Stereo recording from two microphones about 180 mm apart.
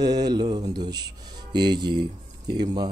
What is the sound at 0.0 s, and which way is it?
Music, 25° right (ahead or behind).